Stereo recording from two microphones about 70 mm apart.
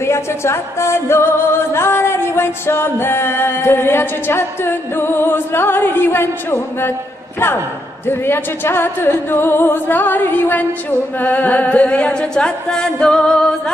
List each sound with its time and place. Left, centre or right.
0.0 s music: left
8.1 s music: left; by 13.6 s centre